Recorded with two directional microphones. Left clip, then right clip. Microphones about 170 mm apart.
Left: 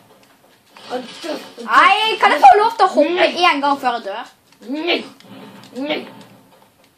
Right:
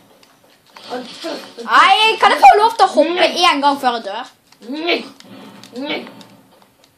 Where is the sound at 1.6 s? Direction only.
40° right (ahead or behind).